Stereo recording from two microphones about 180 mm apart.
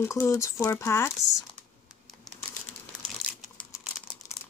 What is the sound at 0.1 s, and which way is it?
Speech, 15° left (ahead or behind).